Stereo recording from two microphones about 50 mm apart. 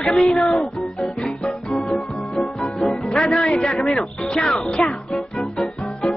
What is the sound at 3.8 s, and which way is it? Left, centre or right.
Speech, centre.